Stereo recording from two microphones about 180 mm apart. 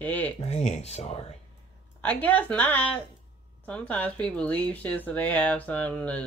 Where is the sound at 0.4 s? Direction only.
35° left (ahead or behind).